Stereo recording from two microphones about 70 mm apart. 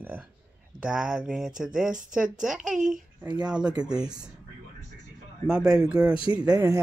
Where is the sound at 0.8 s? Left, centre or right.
Centre.